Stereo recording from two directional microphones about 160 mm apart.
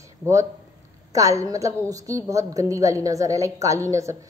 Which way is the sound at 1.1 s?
20° right (ahead or behind).